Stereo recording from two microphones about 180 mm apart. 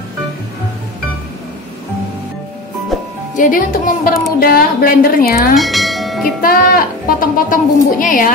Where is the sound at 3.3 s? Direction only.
50° left (ahead or behind).